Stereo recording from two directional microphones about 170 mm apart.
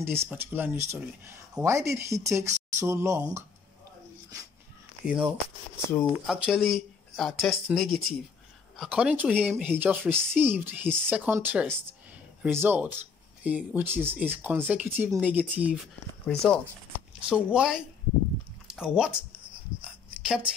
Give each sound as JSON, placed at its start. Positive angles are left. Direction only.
{"t": 0.0, "sound": "speech", "side_deg": -15}
{"t": 5.0, "sound": "speech", "side_deg": -5}
{"t": 16.3, "sound": "speech", "side_deg": 5}
{"t": 17.3, "sound": "speech", "side_deg": -5}
{"t": 19.8, "sound": "a sound", "side_deg": -5}